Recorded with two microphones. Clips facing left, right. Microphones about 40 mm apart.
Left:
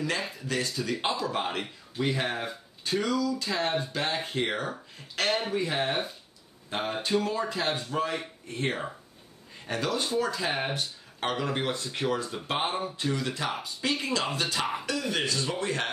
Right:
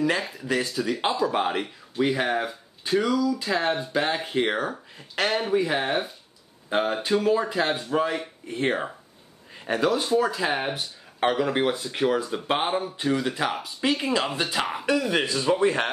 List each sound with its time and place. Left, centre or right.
0.7 s speech: centre
1.0 s speech: centre
12.9 s a man's voice: centre
13.5 s speech: centre
14.3 s a man's voice: centre